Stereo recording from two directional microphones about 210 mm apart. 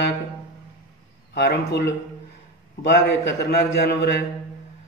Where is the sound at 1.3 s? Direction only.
50° left (ahead or behind).